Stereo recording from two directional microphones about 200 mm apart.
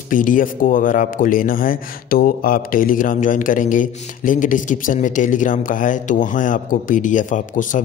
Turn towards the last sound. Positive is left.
turn(degrees=40)  # may be behind; listen again after turning